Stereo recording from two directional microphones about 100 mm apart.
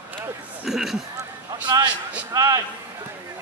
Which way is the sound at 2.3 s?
35° right (ahead or behind).